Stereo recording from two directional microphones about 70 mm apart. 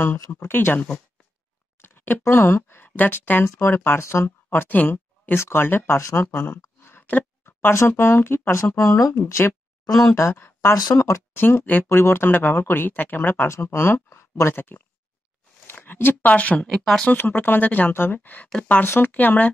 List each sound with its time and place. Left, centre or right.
0.3 s speech: left
5.9 s speech: left
6.3 s speech: left
6.8 s a sound: left
7.7 s speech: left
10.3 s speech: left
11.3 s speech: left; by 17.1 s centre
17.1 s speech: left
18.8 s speech: left